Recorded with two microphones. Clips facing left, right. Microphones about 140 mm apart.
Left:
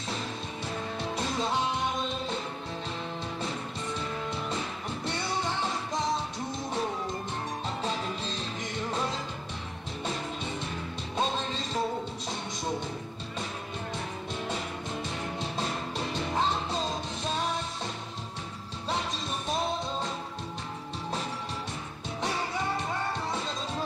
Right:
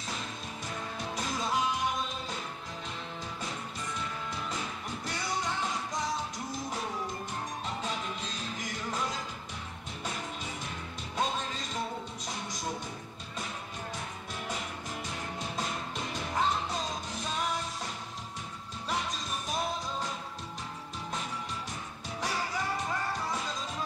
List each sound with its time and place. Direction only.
0.9 s music: 30° left (ahead or behind)
5.0 s music: 30° left (ahead or behind)
7.8 s music: 30° left (ahead or behind)
11.1 s music: 25° left (ahead or behind)
14.5 s music: 25° left (ahead or behind)
19.4 s music: 25° left (ahead or behind)
23.3 s music: 25° left (ahead or behind)